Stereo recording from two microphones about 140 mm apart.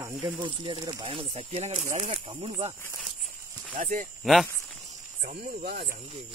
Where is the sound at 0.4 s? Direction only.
30° right (ahead or behind).